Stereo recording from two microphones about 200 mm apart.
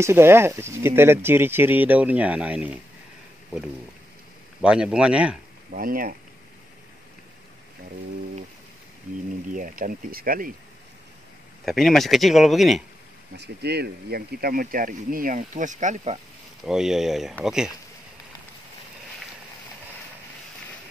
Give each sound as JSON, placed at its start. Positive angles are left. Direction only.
{"t": 0.0, "sound": "speech", "side_deg": -10}
{"t": 4.6, "sound": "speech", "side_deg": -5}
{"t": 5.7, "sound": "speech", "side_deg": -45}
{"t": 9.5, "sound": "speech", "side_deg": -40}
{"t": 11.6, "sound": "speech", "side_deg": 0}
{"t": 13.4, "sound": "speech", "side_deg": -55}
{"t": 16.6, "sound": "speech", "side_deg": -5}